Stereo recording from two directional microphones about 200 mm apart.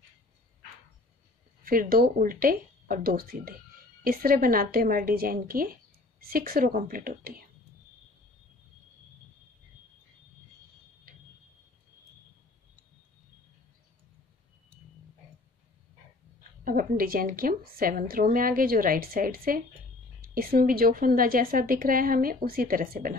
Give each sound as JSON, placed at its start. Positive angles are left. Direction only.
{"t": 1.6, "sound": "a woman's voice", "side_deg": -45}
{"t": 16.6, "sound": "a woman's voice", "side_deg": -45}